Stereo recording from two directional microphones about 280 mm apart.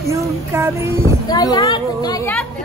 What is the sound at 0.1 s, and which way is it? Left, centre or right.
Speech, centre.